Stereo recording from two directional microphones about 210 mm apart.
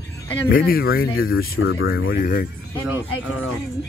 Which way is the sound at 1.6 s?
75° left (ahead or behind).